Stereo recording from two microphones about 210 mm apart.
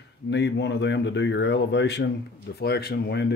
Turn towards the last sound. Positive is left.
turn(degrees=50)  # may be behind; listen again after turning